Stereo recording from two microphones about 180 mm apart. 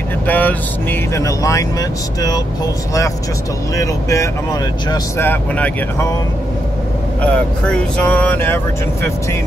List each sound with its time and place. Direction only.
0.3 s speech: 10° left (ahead or behind)
3.7 s speech: 20° left (ahead or behind)
7.2 s speech: 5° left (ahead or behind)